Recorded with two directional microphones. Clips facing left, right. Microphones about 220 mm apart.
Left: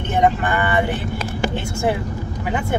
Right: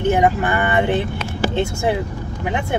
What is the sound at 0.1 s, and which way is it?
Speech, 10° right (ahead or behind).